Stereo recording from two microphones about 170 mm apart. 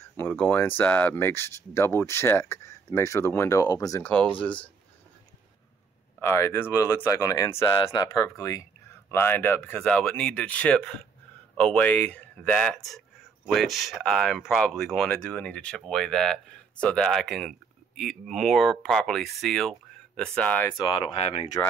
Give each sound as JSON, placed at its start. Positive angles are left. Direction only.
{"t": 0.2, "sound": "speech", "side_deg": 10}
{"t": 6.2, "sound": "speech", "side_deg": 15}
{"t": 20.7, "sound": "speech", "side_deg": 25}